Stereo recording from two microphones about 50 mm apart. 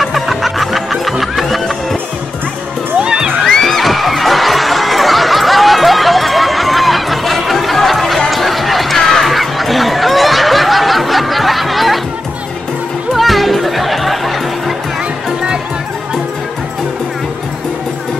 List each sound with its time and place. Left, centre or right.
0.0 s music: centre
3.0 s music: centre
3.4 s music: centre
13.1 s music: centre